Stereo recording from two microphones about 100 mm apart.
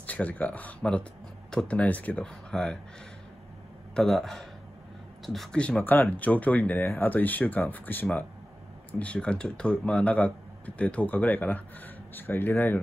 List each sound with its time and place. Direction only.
0.0 s speech: 15° left (ahead or behind)
3.9 s a man's voice: 5° left (ahead or behind); by 12.7 s 25° left (ahead or behind)